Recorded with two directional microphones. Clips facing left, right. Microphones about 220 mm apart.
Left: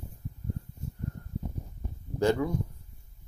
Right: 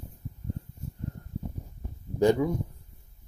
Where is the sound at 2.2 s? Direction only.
15° right (ahead or behind).